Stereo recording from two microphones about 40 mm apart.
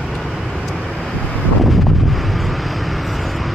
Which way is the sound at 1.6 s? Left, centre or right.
Centre.